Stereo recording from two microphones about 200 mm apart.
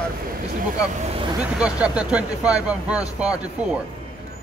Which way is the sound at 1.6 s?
5° right (ahead or behind).